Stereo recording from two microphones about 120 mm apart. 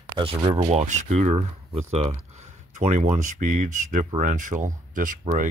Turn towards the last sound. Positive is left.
turn(degrees=-90)